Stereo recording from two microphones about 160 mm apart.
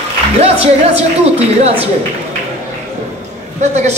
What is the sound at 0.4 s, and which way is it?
Speech, 40° right (ahead or behind).